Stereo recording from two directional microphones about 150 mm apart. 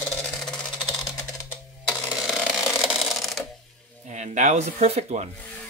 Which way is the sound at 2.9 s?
Centre (ahead or behind).